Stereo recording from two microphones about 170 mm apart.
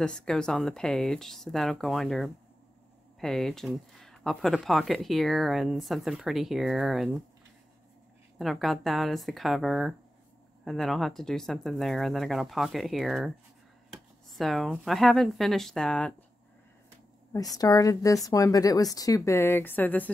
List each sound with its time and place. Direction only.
0.0 s speech: 5° left (ahead or behind)
8.4 s speech: centre (ahead or behind)
17.6 s speech: 20° left (ahead or behind)